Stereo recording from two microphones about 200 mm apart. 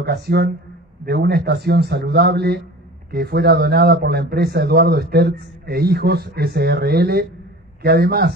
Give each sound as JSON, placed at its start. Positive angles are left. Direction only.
{"t": 0.0, "sound": "a man's voice", "side_deg": -55}